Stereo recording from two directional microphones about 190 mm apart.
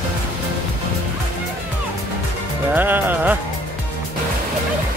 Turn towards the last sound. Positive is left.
turn(degrees=-10)  # may be behind; listen again after turning